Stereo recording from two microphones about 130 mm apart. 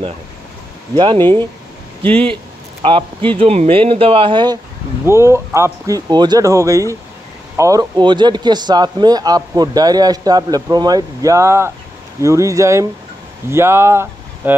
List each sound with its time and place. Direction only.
0.9 s speech: 35° right (ahead or behind)
5.0 s speech: 20° right (ahead or behind)